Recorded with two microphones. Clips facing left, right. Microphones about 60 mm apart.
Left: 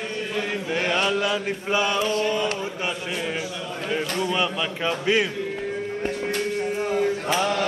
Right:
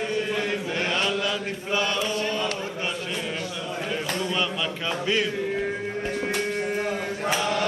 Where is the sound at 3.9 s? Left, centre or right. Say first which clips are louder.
Left 5 dB; centre.